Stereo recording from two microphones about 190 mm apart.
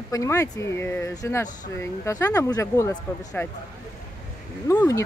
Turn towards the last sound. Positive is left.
turn(degrees=15)  # may be behind; listen again after turning